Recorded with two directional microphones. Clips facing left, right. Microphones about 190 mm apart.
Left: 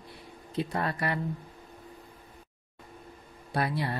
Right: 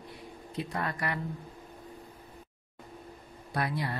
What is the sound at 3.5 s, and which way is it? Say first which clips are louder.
Speech: left 2 dB; 30° left (ahead or behind).